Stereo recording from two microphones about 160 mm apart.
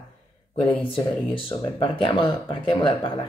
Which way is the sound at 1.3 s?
35° left (ahead or behind).